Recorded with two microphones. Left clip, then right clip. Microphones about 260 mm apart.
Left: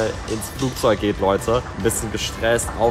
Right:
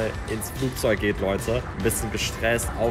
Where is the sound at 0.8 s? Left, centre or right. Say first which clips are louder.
Left 5 dB; centre.